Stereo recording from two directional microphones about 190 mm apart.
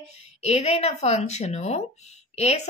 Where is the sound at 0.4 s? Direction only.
35° left (ahead or behind).